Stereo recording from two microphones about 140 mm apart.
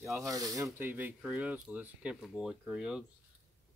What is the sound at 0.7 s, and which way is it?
Speech, 15° right (ahead or behind).